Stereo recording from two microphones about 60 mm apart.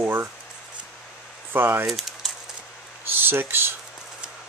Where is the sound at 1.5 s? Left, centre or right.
Right.